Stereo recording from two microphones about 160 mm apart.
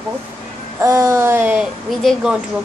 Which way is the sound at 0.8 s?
15° right (ahead or behind).